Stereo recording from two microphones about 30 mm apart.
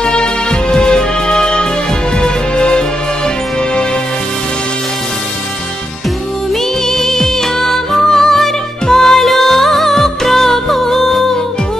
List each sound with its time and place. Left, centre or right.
0.1 s music: left
6.9 s music: centre